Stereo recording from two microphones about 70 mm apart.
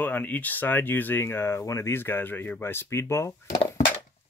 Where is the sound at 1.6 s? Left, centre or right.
Left.